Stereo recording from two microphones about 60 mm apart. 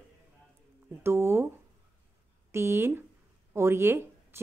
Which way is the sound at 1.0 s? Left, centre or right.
Right.